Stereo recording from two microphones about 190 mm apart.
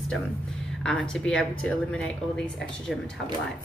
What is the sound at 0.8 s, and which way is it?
Speech, 5° left (ahead or behind).